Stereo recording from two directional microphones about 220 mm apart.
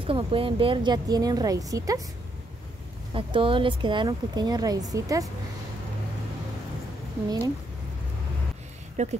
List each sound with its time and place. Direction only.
0.0 s speech: 25° right (ahead or behind)
3.1 s a woman's voice: 25° right (ahead or behind)
7.2 s speech: 15° right (ahead or behind)
8.9 s speech: 30° right (ahead or behind)